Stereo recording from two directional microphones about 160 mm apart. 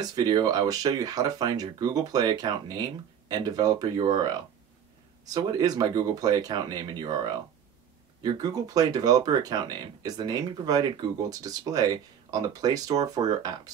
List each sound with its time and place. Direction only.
0.0 s speech: 25° right (ahead or behind)